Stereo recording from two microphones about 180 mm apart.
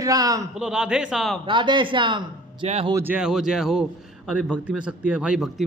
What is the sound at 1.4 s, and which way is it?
Speech, 25° right (ahead or behind).